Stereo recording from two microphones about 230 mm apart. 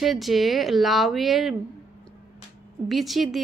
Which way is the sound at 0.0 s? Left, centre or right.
Centre.